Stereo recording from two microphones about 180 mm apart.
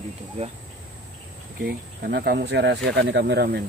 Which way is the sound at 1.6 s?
60° right (ahead or behind).